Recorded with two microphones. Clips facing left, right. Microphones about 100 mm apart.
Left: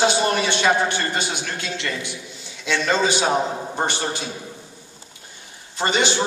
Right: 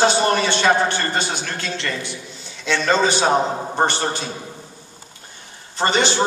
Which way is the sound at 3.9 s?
10° left (ahead or behind).